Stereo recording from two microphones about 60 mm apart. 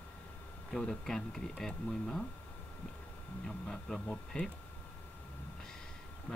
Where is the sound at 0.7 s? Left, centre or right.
Centre.